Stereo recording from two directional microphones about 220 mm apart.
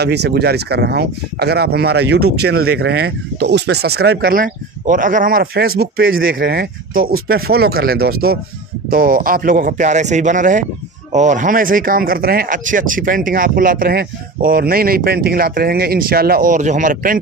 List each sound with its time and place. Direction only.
0.0 s speech: 50° right (ahead or behind)